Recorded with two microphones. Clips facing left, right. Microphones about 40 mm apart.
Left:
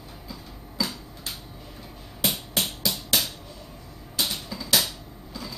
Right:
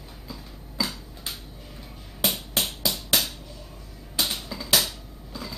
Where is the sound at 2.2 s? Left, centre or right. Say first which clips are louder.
Even; centre.